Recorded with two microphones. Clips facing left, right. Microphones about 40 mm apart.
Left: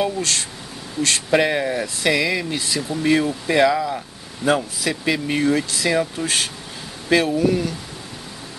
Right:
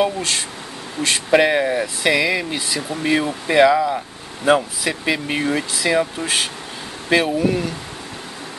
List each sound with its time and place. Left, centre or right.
0.0 s speech: centre